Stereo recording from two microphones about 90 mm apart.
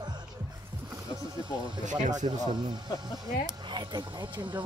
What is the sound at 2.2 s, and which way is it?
Speech, 90° right.